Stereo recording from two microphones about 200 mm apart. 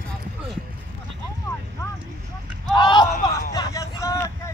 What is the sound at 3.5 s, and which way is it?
Vehicle, 15° left (ahead or behind).